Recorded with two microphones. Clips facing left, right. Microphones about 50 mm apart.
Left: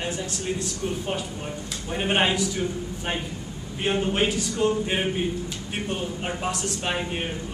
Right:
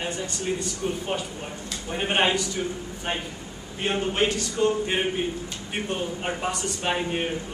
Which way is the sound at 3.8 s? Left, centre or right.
Centre.